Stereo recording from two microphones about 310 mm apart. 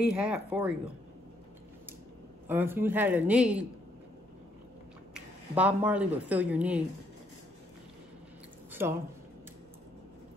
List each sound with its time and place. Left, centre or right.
0.0 s speech: centre
2.4 s speech: centre
5.1 s speech: centre
8.8 s speech: centre